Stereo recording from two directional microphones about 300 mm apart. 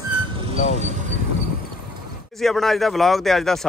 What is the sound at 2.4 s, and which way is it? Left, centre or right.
A man's voice, centre.